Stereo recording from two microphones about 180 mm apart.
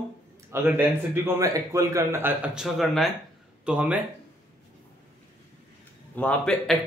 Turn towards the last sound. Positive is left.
turn(degrees=5)  # may be behind; listen again after turning